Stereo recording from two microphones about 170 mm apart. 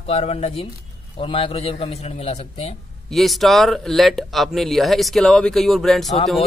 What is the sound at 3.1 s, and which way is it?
Speech, centre (ahead or behind).